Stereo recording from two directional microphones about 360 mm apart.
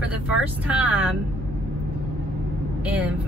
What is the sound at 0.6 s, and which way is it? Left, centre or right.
Speech, centre.